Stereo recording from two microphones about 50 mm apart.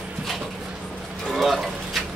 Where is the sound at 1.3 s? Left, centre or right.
Centre.